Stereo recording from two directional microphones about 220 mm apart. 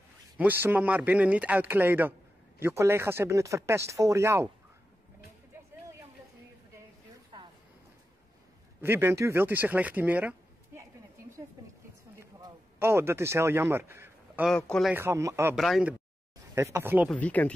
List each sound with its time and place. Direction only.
0.4 s speech: 10° right (ahead or behind)
7.3 s a sound: 20° right (ahead or behind)
8.8 s speech: 10° right (ahead or behind)
12.2 s a sound: 10° right (ahead or behind)
14.5 s a man's voice: 5° left (ahead or behind)
15.0 s speech: 15° right (ahead or behind)
15.5 s a man's voice: centre (ahead or behind)
16.5 s speech: 10° right (ahead or behind)
17.1 s speech: 5° left (ahead or behind)